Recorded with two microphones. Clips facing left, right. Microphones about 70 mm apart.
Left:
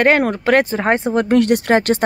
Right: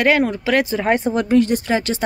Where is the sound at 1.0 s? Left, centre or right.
Left.